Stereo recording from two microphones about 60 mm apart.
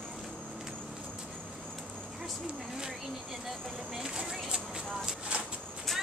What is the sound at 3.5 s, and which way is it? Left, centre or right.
Vehicle, centre.